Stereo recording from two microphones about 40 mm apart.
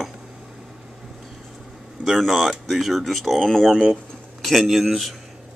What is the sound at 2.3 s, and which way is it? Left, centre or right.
Speech, centre.